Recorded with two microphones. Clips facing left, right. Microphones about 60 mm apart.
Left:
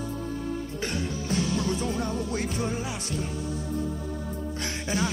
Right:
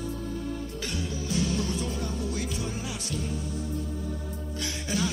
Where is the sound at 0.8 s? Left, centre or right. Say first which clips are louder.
Left 3 dB; left.